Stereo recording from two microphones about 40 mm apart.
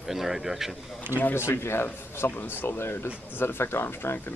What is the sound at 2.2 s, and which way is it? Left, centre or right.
Speech, left.